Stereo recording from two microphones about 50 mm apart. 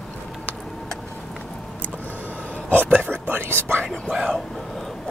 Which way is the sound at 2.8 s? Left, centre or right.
Right.